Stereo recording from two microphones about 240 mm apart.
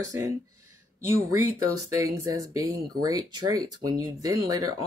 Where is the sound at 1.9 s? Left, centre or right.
Centre.